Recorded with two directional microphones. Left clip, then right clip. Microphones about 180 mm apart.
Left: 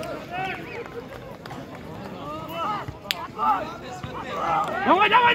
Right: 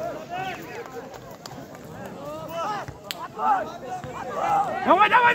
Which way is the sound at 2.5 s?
15° right (ahead or behind).